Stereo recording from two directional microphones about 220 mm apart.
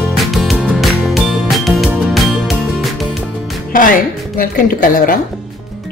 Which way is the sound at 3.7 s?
40° left (ahead or behind).